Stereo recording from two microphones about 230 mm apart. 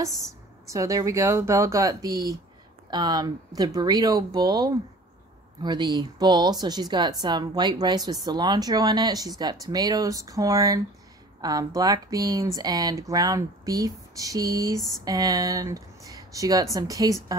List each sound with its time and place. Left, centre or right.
0.0 s speech: centre